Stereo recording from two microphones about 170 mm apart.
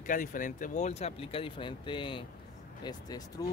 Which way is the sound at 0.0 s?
50° left (ahead or behind).